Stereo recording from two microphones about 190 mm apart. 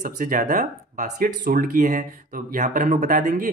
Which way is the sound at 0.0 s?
45° right (ahead or behind).